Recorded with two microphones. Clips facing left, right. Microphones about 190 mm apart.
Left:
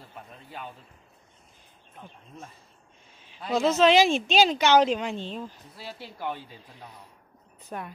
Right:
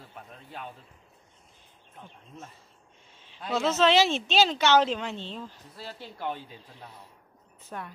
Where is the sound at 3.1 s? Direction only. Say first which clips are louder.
Left 3 dB; 10° left (ahead or behind).